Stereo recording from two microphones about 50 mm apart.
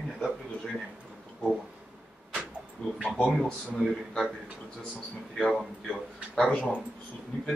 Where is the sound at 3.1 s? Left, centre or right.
Centre.